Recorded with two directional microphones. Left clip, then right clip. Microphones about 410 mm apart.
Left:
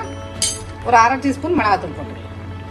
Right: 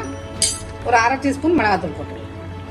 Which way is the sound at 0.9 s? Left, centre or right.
Centre.